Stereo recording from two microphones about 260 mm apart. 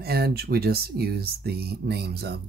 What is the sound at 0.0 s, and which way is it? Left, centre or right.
Speech, right.